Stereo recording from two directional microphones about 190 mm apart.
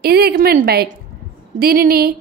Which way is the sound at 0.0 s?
55° right (ahead or behind).